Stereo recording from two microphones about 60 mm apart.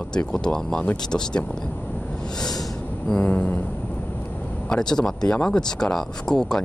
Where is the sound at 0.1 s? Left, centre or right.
Centre.